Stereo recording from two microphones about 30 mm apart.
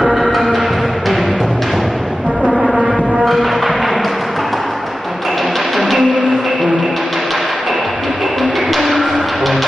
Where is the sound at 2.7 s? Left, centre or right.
Right.